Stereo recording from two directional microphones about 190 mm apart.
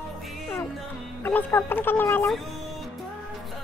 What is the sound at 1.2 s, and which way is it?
Speech, 10° left (ahead or behind).